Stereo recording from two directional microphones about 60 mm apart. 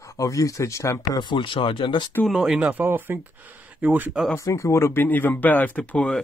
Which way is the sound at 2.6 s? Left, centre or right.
Right.